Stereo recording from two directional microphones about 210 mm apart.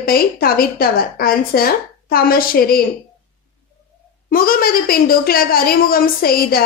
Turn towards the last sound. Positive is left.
turn(degrees=45)  # may be behind; listen again after turning